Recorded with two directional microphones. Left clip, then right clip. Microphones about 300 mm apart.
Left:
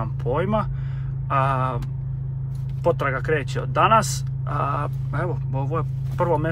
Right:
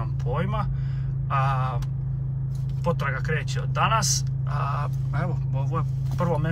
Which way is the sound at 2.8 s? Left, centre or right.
Centre.